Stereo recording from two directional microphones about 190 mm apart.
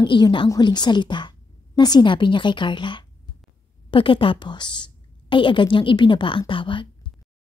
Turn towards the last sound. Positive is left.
turn(degrees=25)  # may be behind; listen again after turning